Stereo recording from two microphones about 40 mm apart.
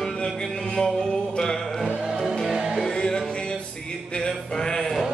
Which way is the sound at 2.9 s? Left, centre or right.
Centre.